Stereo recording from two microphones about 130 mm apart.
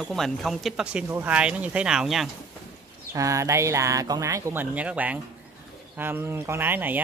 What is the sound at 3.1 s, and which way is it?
Speech, 25° right (ahead or behind).